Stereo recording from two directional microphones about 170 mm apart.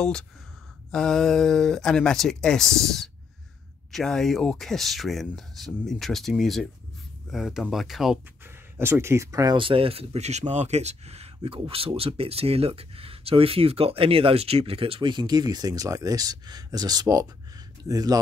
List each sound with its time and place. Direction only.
0.9 s speech: 5° left (ahead or behind)
8.7 s speech: 15° right (ahead or behind)